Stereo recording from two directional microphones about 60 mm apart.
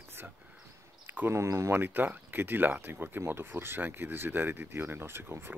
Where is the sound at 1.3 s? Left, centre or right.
Right.